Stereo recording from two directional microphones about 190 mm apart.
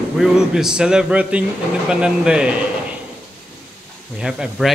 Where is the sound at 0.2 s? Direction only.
5° right (ahead or behind).